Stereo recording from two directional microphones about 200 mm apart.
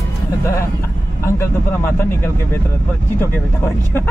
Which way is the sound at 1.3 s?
10° left (ahead or behind).